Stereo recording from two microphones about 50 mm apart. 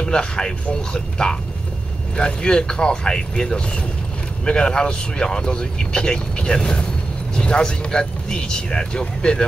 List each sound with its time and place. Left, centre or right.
0.0 s speech: centre